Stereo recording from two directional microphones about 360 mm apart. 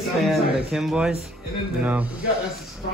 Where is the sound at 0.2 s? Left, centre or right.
Centre.